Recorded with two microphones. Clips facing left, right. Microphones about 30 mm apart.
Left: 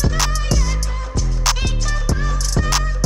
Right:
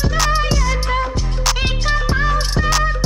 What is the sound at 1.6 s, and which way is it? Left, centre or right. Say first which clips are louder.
Music: right 5 dB; right.